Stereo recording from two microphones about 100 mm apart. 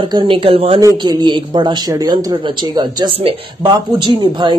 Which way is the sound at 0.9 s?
45° right (ahead or behind).